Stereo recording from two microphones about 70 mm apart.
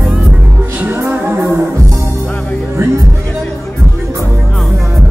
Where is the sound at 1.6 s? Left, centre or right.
Right.